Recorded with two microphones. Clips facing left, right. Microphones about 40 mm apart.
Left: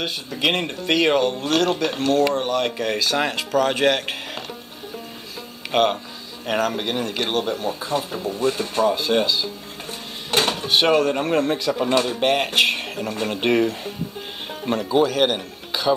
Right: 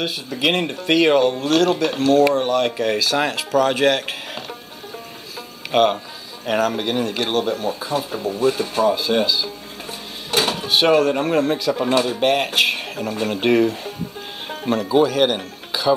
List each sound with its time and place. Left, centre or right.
0.0 s speech: centre
5.7 s speech: centre